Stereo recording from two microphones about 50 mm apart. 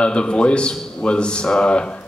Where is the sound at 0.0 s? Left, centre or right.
Centre.